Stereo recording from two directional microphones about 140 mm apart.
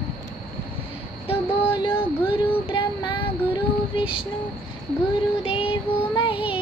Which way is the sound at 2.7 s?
35° left (ahead or behind).